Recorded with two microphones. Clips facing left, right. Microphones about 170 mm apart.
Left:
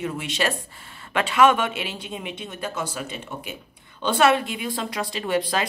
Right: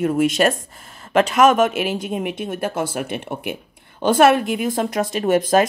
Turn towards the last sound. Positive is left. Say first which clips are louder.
# right 8 dB
turn(degrees=-45)  # may be behind; listen again after turning